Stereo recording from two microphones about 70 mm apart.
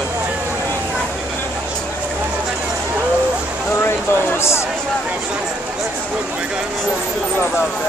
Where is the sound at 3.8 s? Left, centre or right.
Left.